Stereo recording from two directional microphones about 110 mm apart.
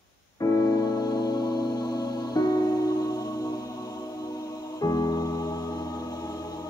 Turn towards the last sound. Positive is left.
turn(degrees=35)  # may be behind; listen again after turning